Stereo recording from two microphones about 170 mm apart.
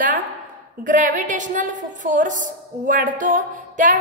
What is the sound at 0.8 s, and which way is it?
A woman's voice, 50° right (ahead or behind).